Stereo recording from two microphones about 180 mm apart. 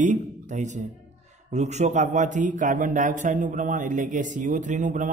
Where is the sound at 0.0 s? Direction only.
45° right (ahead or behind).